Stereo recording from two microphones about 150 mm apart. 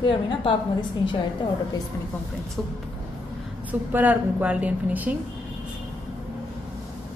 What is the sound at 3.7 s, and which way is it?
A woman's voice, 10° right (ahead or behind).